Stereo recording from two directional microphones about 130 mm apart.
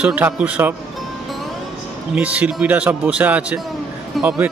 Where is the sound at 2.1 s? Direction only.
10° right (ahead or behind).